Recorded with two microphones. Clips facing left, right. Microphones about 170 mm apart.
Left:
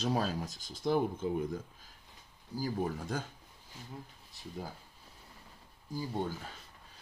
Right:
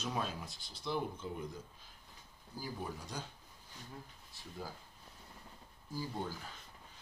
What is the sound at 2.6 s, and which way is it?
Speech, 50° left (ahead or behind).